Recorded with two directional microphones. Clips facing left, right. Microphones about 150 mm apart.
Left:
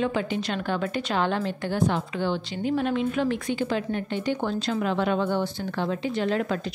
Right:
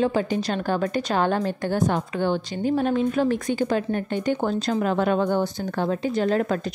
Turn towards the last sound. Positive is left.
turn(degrees=-40)  # may be behind; listen again after turning